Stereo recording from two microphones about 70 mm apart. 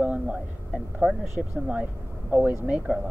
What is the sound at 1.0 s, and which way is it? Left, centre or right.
Speech, centre.